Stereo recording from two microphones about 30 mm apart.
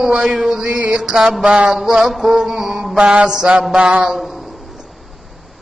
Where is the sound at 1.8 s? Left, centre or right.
Centre.